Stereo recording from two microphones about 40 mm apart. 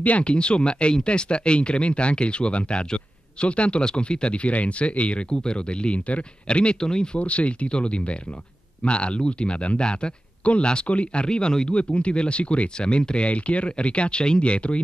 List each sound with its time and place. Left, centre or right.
0.0 s speech: left
7.2 s speech: left